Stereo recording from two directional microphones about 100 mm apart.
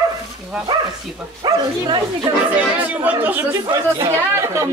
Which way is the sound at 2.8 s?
15° right (ahead or behind).